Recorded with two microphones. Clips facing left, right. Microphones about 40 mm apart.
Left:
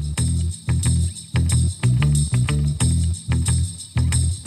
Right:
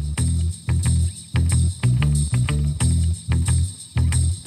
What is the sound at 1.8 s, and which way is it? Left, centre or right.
Music, centre.